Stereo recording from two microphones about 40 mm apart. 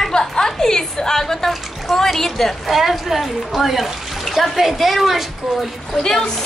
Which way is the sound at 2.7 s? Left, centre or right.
Centre.